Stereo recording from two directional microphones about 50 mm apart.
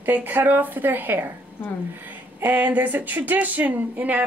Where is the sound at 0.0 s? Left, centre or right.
Right.